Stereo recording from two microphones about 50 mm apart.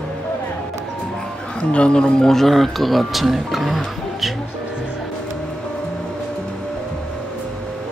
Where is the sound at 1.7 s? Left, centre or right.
Left.